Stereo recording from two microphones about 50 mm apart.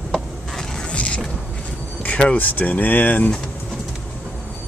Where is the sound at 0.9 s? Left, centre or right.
Left.